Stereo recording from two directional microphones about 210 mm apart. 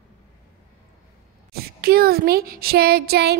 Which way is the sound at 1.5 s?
45° right (ahead or behind).